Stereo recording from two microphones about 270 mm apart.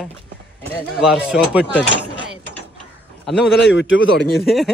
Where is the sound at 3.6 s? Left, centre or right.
Left.